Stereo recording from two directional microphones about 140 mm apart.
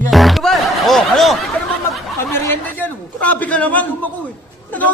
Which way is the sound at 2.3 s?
15° left (ahead or behind).